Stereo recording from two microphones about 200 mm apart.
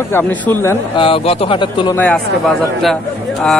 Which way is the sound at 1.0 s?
25° left (ahead or behind).